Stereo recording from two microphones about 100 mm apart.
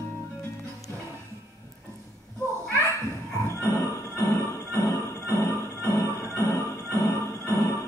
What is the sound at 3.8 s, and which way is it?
Music, 25° left (ahead or behind).